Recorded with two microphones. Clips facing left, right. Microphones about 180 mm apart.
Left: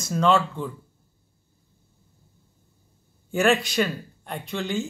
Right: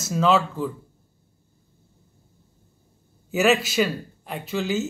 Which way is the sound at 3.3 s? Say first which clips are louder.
Right 1 dB; 5° right (ahead or behind).